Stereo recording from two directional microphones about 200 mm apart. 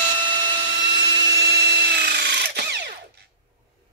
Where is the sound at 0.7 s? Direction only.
60° right (ahead or behind).